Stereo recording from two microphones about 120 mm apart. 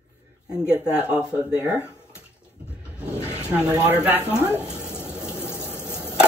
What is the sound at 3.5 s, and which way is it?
Speech, 10° right (ahead or behind).